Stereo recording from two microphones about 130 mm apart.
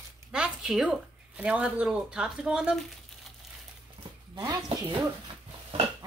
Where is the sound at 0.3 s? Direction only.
5° right (ahead or behind).